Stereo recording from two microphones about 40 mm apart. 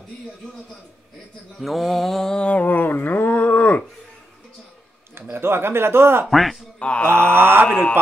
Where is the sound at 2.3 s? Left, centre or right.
Left.